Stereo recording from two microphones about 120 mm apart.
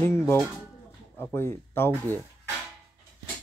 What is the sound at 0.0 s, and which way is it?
Speech, 20° left (ahead or behind).